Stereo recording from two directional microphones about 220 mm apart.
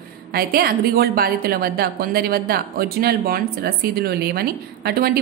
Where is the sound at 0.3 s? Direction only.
45° right (ahead or behind).